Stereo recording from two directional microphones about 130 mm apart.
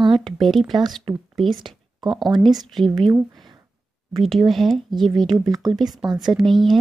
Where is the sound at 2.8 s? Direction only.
40° right (ahead or behind).